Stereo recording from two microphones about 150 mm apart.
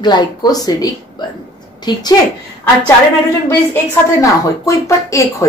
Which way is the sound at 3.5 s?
20° left (ahead or behind).